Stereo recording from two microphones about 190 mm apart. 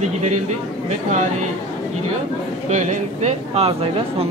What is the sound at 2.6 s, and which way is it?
Speech, 35° right (ahead or behind).